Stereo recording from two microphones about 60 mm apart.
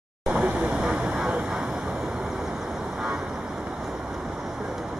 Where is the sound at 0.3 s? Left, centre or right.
Right.